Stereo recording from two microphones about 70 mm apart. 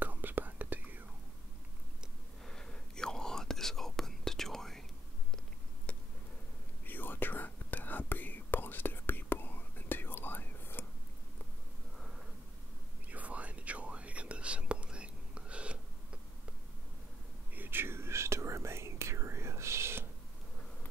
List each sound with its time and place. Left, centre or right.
0.0 s whispering: right
2.4 s whispering: centre
6.9 s whispering: left
13.1 s whispering: centre
17.6 s whispering: right